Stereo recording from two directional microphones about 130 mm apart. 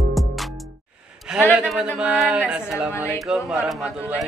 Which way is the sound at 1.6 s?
10° right (ahead or behind).